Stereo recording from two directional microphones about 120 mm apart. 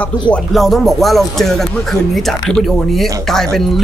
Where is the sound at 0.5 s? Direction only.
Centre (ahead or behind).